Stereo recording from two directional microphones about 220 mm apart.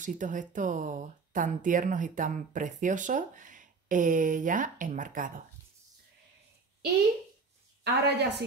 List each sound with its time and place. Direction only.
0.0 s speech: 35° right (ahead or behind)
7.8 s a woman's voice: 50° right (ahead or behind)